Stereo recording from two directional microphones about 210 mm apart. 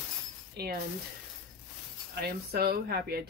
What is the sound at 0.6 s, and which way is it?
Speech, 50° right (ahead or behind).